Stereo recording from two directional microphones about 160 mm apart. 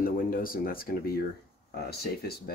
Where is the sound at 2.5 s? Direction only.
75° left (ahead or behind).